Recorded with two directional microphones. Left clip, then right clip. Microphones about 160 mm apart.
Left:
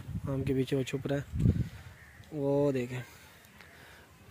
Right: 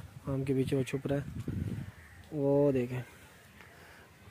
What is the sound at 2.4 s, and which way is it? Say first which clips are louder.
Speech: right 1 dB; 10° right (ahead or behind).